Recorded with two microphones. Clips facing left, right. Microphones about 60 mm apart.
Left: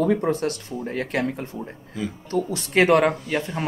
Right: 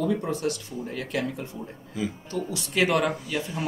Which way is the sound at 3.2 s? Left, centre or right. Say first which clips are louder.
Left 4 dB; left.